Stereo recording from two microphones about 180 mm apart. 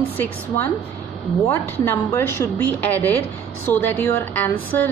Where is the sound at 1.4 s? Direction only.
15° left (ahead or behind).